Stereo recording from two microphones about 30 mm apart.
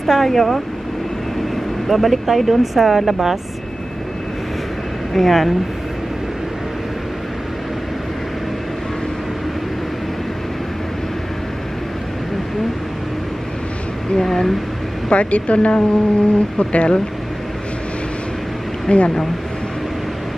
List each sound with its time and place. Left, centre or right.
0.0 s speech: centre
1.9 s speech: centre
5.1 s speech: centre
14.2 s speech: centre
15.0 s speech: left
18.9 s speech: left